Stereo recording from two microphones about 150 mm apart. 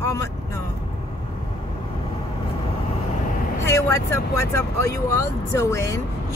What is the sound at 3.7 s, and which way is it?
Speech, 20° left (ahead or behind).